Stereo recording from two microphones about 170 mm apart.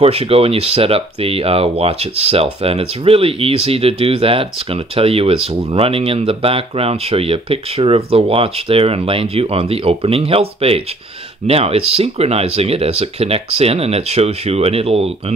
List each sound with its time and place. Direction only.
0.0 s speech: 35° right (ahead or behind)